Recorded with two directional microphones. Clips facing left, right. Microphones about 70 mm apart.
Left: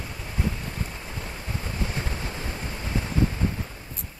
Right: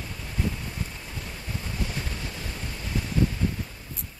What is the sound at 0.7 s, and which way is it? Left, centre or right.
Waves, left.